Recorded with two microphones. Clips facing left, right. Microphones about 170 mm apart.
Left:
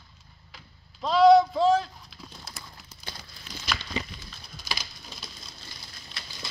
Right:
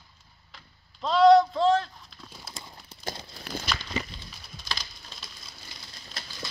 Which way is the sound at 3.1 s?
45° right (ahead or behind).